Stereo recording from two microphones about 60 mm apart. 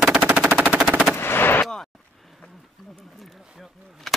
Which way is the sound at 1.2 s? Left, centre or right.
Left.